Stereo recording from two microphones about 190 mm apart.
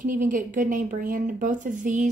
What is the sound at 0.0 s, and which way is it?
A woman's voice, 45° right (ahead or behind).